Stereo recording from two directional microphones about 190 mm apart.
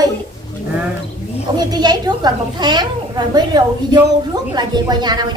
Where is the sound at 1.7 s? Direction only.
20° right (ahead or behind).